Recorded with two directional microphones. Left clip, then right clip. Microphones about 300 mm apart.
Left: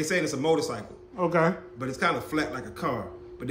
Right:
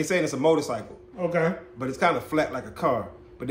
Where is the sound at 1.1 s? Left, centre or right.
Centre.